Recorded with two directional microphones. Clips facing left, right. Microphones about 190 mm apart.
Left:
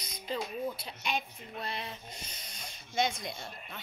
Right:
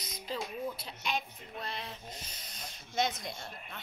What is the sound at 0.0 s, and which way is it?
Speech, centre (ahead or behind).